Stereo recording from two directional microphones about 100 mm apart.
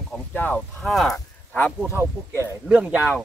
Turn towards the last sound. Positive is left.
turn(degrees=-15)  # may be behind; listen again after turning